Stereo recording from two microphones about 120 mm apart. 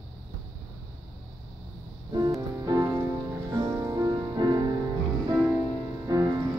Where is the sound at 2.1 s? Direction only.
35° right (ahead or behind).